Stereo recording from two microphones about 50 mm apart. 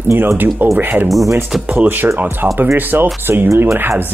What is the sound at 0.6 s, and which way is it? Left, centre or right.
Speech, right.